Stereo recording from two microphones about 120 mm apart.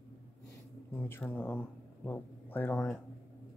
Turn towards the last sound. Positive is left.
turn(degrees=5)  # may be behind; listen again after turning